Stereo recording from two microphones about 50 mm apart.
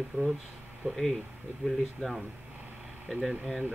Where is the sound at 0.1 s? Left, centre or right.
Centre.